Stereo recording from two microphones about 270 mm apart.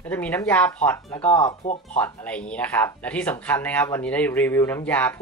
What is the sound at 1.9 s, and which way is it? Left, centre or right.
Speech, centre.